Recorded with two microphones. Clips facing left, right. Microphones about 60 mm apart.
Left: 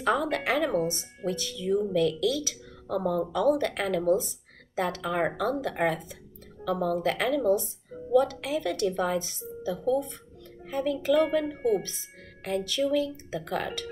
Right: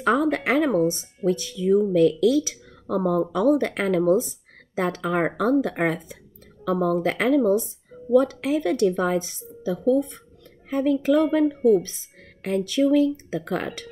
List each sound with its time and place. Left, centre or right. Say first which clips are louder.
0.0 s speech: right 5 dB; right